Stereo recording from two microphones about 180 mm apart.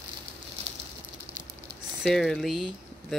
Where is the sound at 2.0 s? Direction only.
Centre (ahead or behind).